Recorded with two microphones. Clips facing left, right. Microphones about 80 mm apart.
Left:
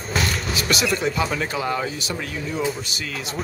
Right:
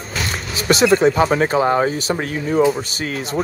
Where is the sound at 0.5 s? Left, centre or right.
Right.